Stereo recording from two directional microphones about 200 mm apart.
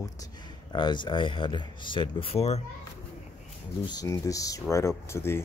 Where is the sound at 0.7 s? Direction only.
25° left (ahead or behind).